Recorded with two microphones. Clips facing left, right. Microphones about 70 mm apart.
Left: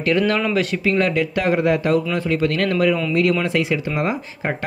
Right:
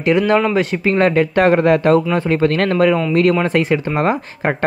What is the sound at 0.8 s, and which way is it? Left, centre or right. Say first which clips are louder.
Speech: right 6 dB; right.